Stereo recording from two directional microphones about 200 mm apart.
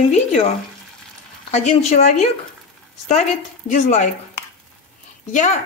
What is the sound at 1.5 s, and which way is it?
Speech, 35° left (ahead or behind).